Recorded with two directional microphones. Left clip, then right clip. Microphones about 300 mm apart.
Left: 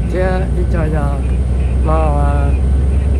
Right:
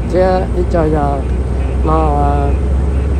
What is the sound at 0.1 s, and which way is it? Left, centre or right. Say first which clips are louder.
Speech: right 6 dB; centre.